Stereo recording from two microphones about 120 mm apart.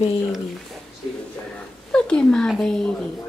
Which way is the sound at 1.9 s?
5° left (ahead or behind).